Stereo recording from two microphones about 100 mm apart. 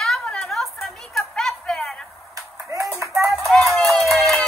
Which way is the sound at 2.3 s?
35° right (ahead or behind).